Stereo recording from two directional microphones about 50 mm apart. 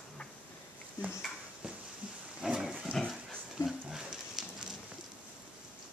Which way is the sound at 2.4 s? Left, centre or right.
Centre.